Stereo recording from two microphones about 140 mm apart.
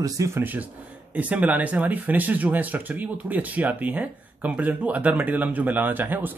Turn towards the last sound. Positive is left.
turn(degrees=-15)  # may be behind; listen again after turning